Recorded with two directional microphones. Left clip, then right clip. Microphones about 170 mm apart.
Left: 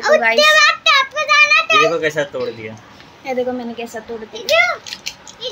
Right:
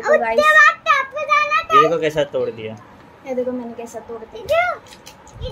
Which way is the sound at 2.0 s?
30° right (ahead or behind).